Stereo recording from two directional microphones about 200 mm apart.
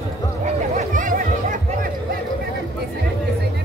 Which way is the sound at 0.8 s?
40° right (ahead or behind).